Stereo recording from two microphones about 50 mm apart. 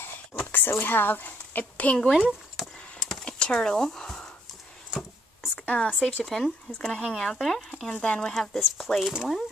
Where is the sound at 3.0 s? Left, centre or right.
Centre.